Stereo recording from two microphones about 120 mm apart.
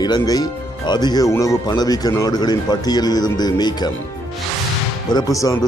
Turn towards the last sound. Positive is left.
turn(degrees=30)  # may be behind; listen again after turning